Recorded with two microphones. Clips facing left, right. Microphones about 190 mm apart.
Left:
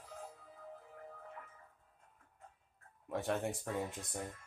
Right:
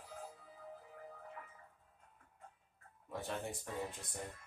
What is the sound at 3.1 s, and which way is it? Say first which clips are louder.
Speech: left 6 dB; 75° left (ahead or behind).